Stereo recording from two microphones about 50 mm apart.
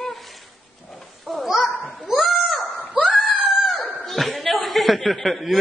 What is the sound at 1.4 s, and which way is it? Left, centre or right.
Bow-wow, centre.